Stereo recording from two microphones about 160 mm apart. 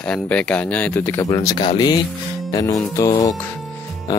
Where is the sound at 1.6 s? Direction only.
30° left (ahead or behind).